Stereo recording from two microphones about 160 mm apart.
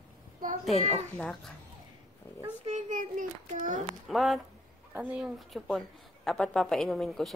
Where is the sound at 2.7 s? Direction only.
50° right (ahead or behind).